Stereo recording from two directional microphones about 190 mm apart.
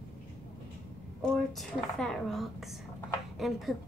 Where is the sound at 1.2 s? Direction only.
5° left (ahead or behind).